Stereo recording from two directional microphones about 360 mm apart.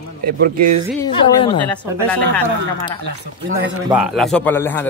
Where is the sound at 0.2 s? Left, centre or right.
Right.